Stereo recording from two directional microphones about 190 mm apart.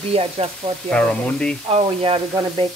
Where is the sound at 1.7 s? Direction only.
30° right (ahead or behind).